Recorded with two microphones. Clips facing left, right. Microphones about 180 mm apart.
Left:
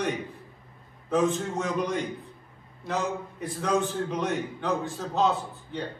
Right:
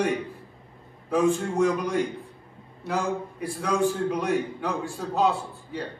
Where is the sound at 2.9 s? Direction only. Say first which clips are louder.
Right 2 dB; 10° right (ahead or behind).